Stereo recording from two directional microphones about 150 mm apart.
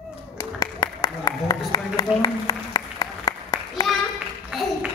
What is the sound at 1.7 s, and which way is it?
Applause, 25° left (ahead or behind).